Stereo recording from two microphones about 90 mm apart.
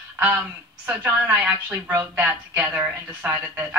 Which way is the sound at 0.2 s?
15° right (ahead or behind).